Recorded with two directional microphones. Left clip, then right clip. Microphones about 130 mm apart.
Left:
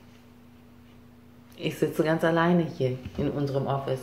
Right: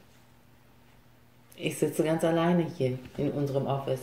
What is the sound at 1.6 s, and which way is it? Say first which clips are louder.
A woman's voice: left 2 dB; 15° right (ahead or behind).